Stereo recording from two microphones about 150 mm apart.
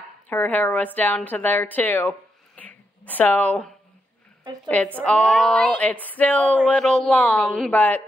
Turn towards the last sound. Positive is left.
turn(degrees=10)  # may be behind; listen again after turning